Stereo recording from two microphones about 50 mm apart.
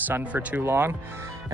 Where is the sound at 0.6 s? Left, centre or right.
Right.